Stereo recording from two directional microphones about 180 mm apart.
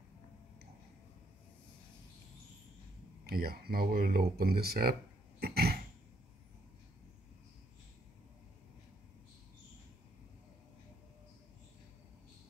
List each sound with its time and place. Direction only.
3.3 s speech: 60° right (ahead or behind)
5.4 s throat clearing: 60° right (ahead or behind)